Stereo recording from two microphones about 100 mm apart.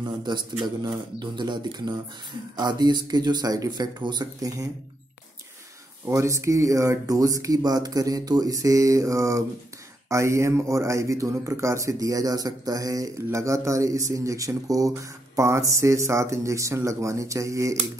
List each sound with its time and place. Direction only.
0.0 s speech: 50° right (ahead or behind)
6.0 s speech: 30° right (ahead or behind)